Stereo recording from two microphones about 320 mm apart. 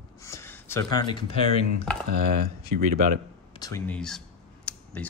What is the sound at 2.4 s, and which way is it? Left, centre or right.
Speech, right.